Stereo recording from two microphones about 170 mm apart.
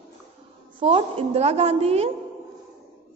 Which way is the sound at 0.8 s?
30° right (ahead or behind).